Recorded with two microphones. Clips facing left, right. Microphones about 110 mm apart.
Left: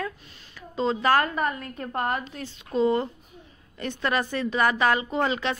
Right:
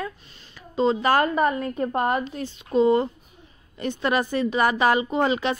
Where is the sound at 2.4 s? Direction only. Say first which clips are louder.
Right 3 dB; 5° right (ahead or behind).